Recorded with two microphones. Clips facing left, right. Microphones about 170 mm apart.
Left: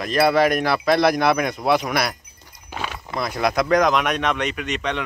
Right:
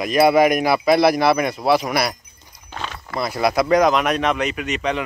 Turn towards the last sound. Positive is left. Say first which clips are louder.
# right 3 dB
turn(degrees=-5)  # may be behind; listen again after turning